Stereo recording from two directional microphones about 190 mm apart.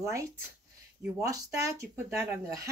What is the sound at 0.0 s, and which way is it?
Speech, 15° right (ahead or behind).